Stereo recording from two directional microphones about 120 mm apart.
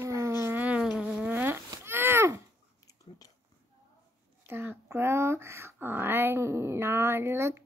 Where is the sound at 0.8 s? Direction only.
Centre (ahead or behind); by 2.4 s 20° right (ahead or behind).